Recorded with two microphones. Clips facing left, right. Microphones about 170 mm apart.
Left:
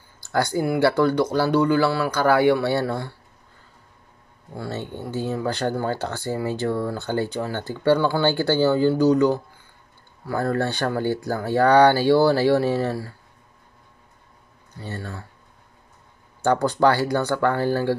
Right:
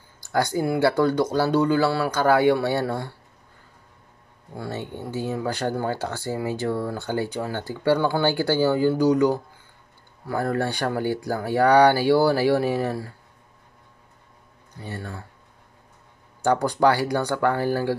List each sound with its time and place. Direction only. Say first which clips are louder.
0.2 s speech: left 1 dB; 15° right (ahead or behind)
4.6 s speech: left 1 dB; 10° right (ahead or behind)
14.8 s speech: left 1 dB; 15° right (ahead or behind)
16.4 s speech: left 1 dB; 10° right (ahead or behind)